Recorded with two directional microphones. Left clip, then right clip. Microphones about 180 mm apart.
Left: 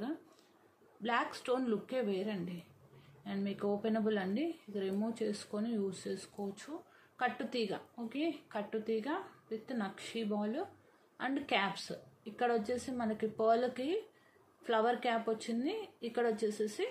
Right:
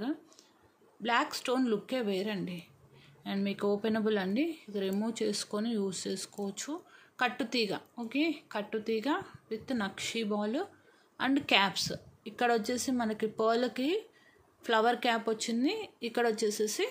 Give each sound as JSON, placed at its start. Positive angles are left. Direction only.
{"t": 1.0, "sound": "a woman's voice", "side_deg": -35}